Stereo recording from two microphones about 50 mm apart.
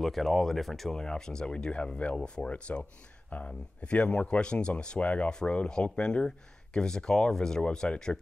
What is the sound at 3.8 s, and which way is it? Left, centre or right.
Speech, left.